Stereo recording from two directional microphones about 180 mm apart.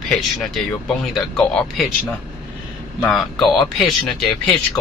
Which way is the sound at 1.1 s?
Centre (ahead or behind).